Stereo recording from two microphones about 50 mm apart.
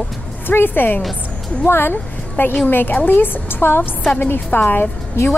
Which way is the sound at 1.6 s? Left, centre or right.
Left.